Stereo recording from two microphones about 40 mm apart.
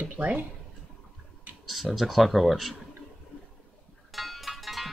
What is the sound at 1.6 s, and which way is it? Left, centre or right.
Speech, centre.